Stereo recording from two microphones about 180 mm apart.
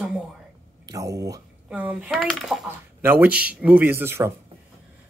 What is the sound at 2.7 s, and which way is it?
Speech, 10° right (ahead or behind).